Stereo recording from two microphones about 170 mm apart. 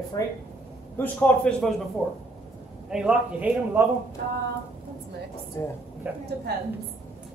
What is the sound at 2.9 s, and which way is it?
Speech, 5° right (ahead or behind).